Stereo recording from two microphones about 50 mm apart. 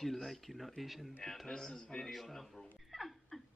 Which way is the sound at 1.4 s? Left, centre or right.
Centre.